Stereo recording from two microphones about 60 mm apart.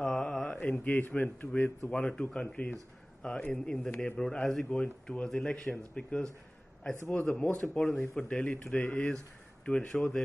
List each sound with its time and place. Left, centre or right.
0.0 s mantra: centre
0.6 s speech: left; by 10.2 s centre